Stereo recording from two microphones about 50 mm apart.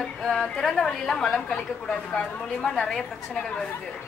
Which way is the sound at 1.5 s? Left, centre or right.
Centre.